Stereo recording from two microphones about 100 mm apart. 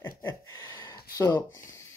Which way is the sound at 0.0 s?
30° left (ahead or behind).